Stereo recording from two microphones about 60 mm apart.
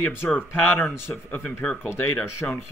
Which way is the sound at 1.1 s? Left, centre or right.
Left.